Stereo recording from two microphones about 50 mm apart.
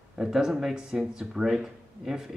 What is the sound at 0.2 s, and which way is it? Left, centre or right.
Speech, centre.